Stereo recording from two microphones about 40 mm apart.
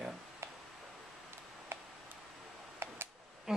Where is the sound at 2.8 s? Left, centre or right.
Right.